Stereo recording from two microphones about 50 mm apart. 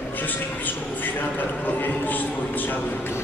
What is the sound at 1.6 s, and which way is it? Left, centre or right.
Speech, left.